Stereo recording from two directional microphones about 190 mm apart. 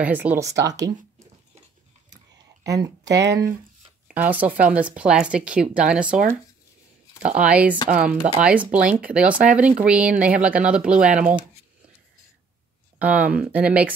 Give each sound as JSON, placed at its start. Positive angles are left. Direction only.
{"t": 0.0, "sound": "speech", "side_deg": -10}
{"t": 2.6, "sound": "speech", "side_deg": -20}
{"t": 7.2, "sound": "speech", "side_deg": -5}
{"t": 13.0, "sound": "speech", "side_deg": -5}